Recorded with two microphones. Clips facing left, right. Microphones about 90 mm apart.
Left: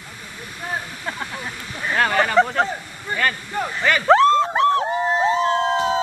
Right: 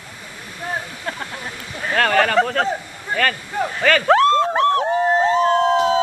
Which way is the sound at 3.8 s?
20° left (ahead or behind).